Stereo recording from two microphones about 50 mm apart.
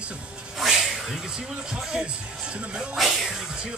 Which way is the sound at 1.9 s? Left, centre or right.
Centre.